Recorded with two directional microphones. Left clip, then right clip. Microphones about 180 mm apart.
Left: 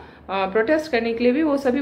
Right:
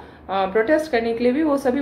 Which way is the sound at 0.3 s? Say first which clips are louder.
Right 1 dB; 10° left (ahead or behind).